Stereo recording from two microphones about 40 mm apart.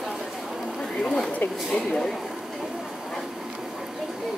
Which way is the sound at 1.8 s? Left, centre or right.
Centre.